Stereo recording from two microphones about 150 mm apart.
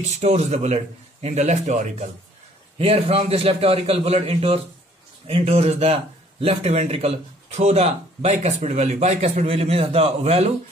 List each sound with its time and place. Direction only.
0.1 s speech: 45° right (ahead or behind)
2.8 s a man's voice: 40° right (ahead or behind)